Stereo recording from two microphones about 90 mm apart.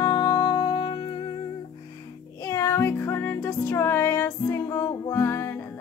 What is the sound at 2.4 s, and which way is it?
Music, 30° left (ahead or behind).